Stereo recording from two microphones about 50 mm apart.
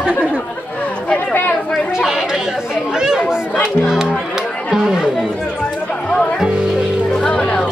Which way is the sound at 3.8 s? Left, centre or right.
Centre.